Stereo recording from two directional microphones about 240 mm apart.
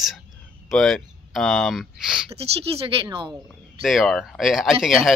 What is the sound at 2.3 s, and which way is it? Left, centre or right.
Speech, right.